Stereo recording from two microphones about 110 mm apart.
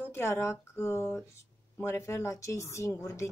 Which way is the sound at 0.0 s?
25° left (ahead or behind).